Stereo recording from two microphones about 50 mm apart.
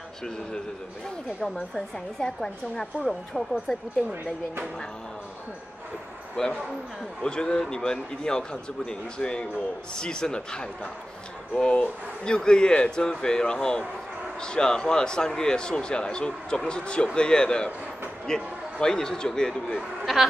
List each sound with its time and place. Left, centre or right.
2.1 s speech: centre
6.4 s a man's voice: centre